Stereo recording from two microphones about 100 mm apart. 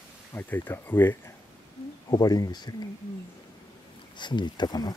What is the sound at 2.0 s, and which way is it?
Speech, 40° left (ahead or behind).